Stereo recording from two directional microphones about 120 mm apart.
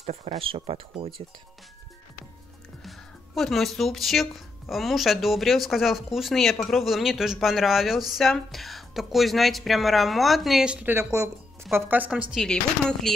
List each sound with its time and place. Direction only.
0.0 s speech: 60° right (ahead or behind)
3.3 s a woman's voice: centre (ahead or behind); by 12.2 s 15° right (ahead or behind)
12.4 s speech: 5° left (ahead or behind)